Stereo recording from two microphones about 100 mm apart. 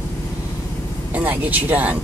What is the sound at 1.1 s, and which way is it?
Speech, 15° right (ahead or behind).